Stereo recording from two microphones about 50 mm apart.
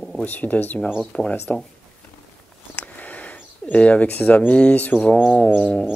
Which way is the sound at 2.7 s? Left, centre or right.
Left.